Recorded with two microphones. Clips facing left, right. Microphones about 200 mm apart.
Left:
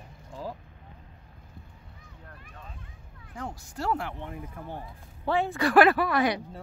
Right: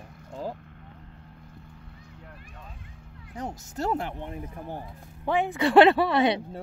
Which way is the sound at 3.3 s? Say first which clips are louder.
Right 3 dB; 20° right (ahead or behind).